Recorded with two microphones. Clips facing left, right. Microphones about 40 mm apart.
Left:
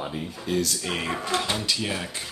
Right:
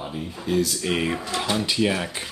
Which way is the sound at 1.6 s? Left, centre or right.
Centre.